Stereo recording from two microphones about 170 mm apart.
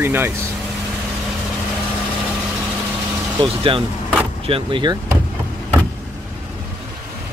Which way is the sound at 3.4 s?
30° right (ahead or behind).